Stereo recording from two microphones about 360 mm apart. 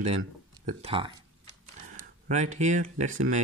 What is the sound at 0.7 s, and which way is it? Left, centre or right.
Speech, centre.